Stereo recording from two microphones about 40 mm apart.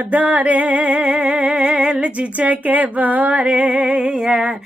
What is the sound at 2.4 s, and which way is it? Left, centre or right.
Music, right.